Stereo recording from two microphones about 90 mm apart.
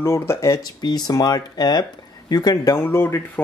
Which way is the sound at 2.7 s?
25° left (ahead or behind).